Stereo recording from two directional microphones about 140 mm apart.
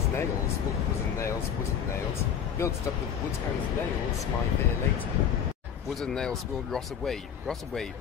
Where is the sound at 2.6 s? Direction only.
20° left (ahead or behind).